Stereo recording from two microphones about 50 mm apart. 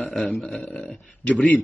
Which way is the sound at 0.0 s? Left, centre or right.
Centre.